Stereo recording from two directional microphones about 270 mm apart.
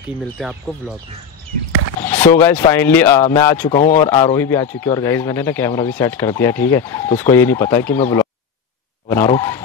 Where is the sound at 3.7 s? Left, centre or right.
Left.